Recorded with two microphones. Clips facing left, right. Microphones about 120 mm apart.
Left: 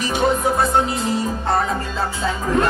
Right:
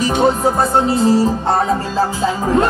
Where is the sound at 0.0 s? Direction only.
30° right (ahead or behind).